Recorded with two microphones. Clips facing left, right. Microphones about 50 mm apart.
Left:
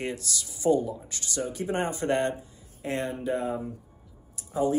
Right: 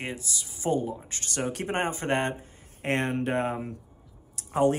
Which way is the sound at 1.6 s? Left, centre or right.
Right.